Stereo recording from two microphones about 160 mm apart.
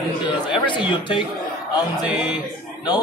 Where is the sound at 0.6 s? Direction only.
30° left (ahead or behind).